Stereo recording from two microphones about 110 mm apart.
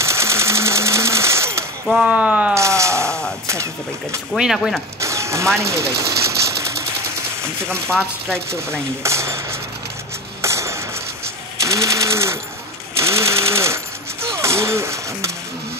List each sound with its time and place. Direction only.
0.0 s sewing machine: 25° right (ahead or behind)
1.9 s speech: 5° right (ahead or behind)
2.5 s a sound: 25° right (ahead or behind)
4.4 s speech: centre (ahead or behind)
5.0 s sewing machine: 25° right (ahead or behind)
9.0 s sewing machine: 25° right (ahead or behind)
10.4 s a sound: 25° right (ahead or behind)
11.6 s sewing machine: 30° right (ahead or behind)
14.2 s a sound: 25° right (ahead or behind)